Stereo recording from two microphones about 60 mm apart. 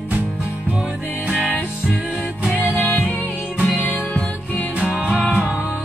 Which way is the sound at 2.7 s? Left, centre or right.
Left.